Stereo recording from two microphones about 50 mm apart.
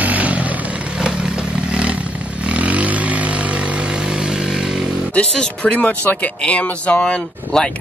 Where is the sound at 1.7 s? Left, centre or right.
Right.